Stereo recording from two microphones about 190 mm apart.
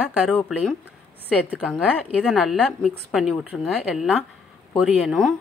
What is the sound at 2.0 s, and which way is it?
A woman's voice, 5° right (ahead or behind).